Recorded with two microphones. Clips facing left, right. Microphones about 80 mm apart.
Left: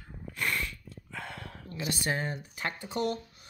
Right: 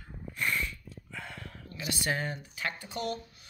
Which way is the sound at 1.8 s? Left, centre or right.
Left.